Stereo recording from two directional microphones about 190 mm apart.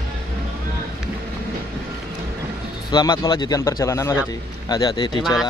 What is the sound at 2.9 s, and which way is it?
A man's voice, 20° left (ahead or behind).